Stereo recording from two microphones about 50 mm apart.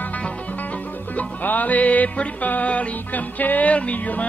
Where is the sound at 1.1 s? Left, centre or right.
Left.